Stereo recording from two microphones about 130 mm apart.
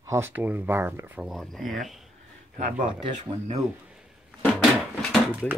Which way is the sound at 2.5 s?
70° right (ahead or behind).